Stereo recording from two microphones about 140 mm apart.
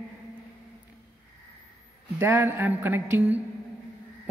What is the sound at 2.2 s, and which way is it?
A man's voice, 15° right (ahead or behind).